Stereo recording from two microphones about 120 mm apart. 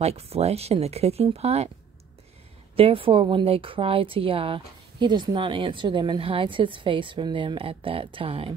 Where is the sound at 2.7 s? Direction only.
50° right (ahead or behind).